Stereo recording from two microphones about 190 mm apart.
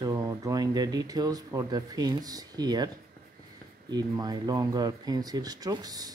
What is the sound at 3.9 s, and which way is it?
Speech, 20° right (ahead or behind).